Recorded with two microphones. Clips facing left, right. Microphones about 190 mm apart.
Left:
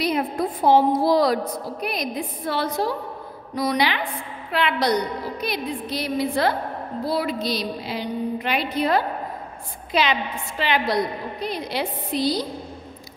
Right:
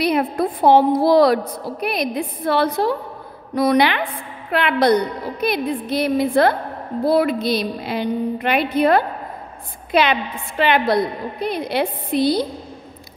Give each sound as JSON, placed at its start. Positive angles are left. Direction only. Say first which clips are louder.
{"t": 0.0, "sound": "a woman's voice", "louder": "right 4 dB", "side_deg": -65}